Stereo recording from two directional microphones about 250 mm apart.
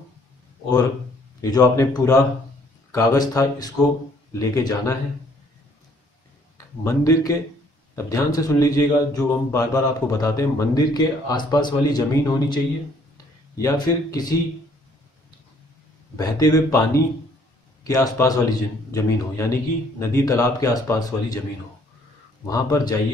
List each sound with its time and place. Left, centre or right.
1.4 s a man's voice: centre
6.8 s a man's voice: centre
13.6 s a man's voice: centre
16.2 s a man's voice: centre
22.5 s a man's voice: centre